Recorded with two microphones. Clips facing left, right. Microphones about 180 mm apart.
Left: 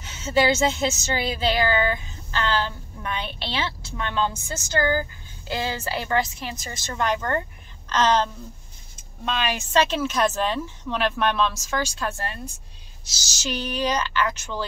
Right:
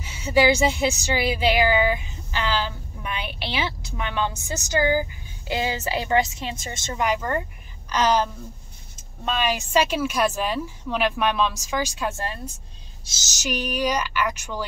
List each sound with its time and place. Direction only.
0.0 s a woman's voice: 10° right (ahead or behind)
7.0 s speech: 10° right (ahead or behind)
9.6 s speech: 10° right (ahead or behind)
13.2 s speech: 15° right (ahead or behind)